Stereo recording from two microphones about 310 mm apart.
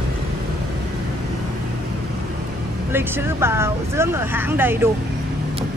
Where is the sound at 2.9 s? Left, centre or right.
Centre.